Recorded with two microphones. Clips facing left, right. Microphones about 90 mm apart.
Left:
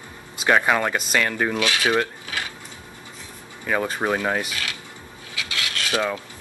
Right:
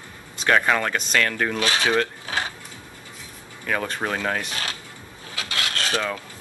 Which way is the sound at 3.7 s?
10° left (ahead or behind).